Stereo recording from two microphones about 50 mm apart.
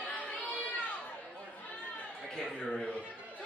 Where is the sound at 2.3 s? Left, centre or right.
Centre.